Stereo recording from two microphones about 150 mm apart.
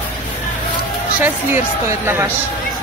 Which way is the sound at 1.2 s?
15° right (ahead or behind).